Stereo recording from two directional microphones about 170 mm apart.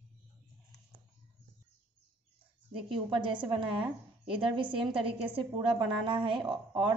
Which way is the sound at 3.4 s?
30° right (ahead or behind).